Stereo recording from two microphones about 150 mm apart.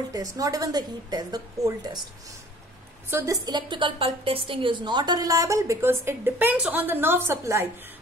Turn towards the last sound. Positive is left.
turn(degrees=-20)  # may be behind; listen again after turning